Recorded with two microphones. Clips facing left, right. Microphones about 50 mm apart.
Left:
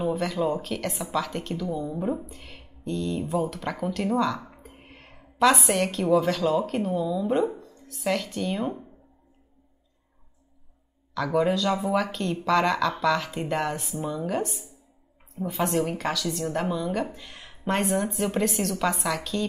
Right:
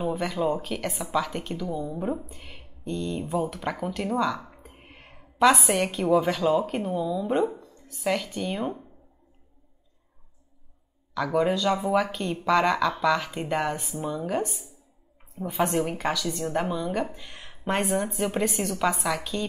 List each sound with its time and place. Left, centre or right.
0.0 s speech: centre
11.1 s speech: centre